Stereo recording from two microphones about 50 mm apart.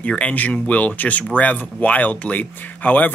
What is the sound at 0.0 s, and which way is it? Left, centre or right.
Speech, left.